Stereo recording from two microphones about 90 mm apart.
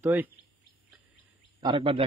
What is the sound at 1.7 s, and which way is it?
Speech, 90° right.